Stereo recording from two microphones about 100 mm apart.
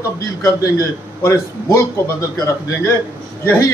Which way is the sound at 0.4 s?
35° left (ahead or behind).